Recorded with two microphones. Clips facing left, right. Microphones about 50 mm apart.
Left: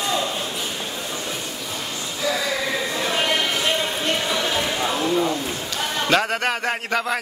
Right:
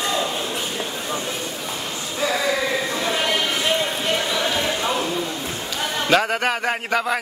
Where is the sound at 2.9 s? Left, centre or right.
Centre.